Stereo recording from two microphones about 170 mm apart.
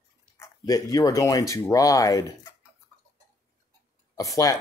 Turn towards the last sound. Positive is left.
turn(degrees=20)  # may be behind; listen again after turning